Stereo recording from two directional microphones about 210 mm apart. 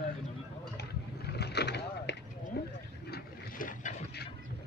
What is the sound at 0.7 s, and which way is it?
Vehicle, 50° left (ahead or behind).